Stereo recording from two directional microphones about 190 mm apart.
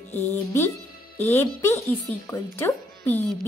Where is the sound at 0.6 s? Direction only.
10° left (ahead or behind).